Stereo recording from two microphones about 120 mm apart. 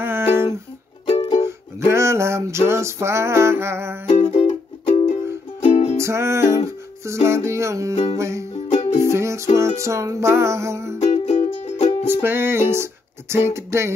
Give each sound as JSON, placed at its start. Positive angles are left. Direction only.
{"t": 0.0, "sound": "humming", "side_deg": -20}
{"t": 1.0, "sound": "music", "side_deg": 55}
{"t": 1.9, "sound": "music", "side_deg": -25}
{"t": 4.1, "sound": "music", "side_deg": 50}
{"t": 5.9, "sound": "music", "side_deg": -25}
{"t": 8.6, "sound": "music", "side_deg": 85}
{"t": 9.1, "sound": "music", "side_deg": -25}
{"t": 11.0, "sound": "music", "side_deg": 70}
{"t": 12.1, "sound": "music", "side_deg": -20}
{"t": 12.7, "sound": "speech", "side_deg": -20}